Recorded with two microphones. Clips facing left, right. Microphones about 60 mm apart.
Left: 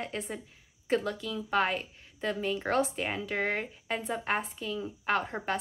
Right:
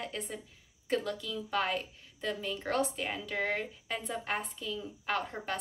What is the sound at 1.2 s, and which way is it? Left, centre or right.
A woman's voice, left.